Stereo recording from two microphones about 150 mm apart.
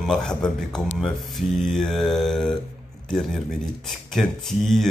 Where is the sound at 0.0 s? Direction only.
5° left (ahead or behind).